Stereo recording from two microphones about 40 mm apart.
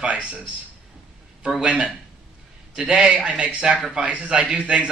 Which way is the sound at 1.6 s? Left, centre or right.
Right.